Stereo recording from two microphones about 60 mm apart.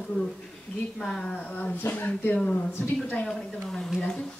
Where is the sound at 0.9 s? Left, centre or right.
Centre.